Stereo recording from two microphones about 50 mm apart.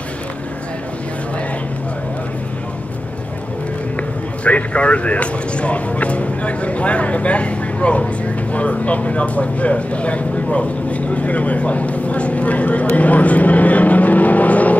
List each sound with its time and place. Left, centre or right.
4.5 s speech: left